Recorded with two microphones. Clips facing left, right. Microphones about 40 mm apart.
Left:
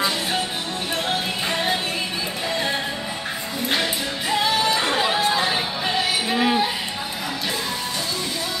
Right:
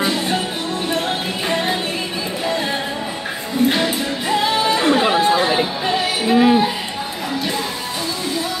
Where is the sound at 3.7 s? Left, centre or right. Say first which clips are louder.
Right 4 dB; centre.